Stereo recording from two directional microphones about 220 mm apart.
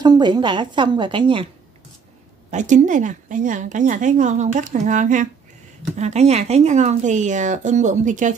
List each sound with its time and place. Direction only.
0.0 s a woman's voice: 20° right (ahead or behind)
2.5 s a woman's voice: 35° right (ahead or behind)